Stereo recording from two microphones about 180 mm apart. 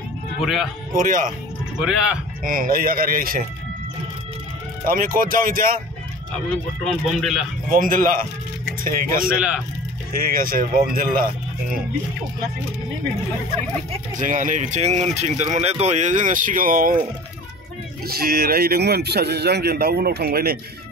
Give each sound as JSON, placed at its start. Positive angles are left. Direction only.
{"t": 0.9, "sound": "speech", "side_deg": -50}
{"t": 2.4, "sound": "speech", "side_deg": -50}
{"t": 4.8, "sound": "speech", "side_deg": -50}
{"t": 6.5, "sound": "speech", "side_deg": 0}
{"t": 7.7, "sound": "speech", "side_deg": -50}
{"t": 14.1, "sound": "speech", "side_deg": -45}
{"t": 18.0, "sound": "speech", "side_deg": -55}